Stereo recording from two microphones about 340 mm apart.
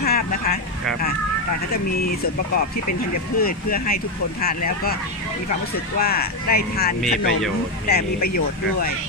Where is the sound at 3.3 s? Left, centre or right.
Left.